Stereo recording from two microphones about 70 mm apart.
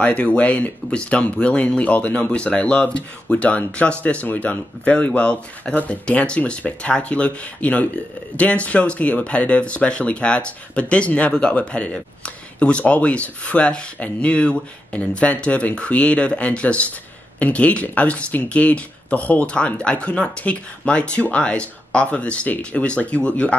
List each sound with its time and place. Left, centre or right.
0.0 s speech: centre